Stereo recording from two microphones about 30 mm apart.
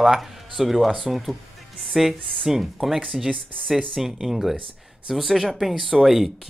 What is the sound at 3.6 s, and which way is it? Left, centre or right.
Speech, centre.